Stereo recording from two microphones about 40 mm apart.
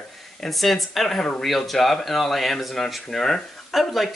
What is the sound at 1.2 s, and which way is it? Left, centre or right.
Speech, centre.